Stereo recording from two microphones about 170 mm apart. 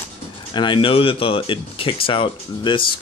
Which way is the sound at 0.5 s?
30° left (ahead or behind).